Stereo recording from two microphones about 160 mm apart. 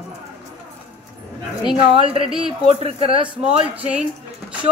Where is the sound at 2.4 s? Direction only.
35° right (ahead or behind).